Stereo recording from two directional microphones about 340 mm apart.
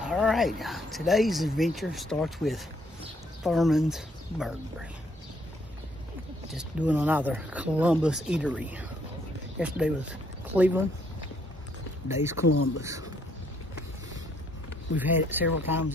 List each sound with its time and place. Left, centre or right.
0.0 s speech: centre
6.5 s speech: centre
12.1 s speech: centre
12.4 s speech: left
15.0 s speech: centre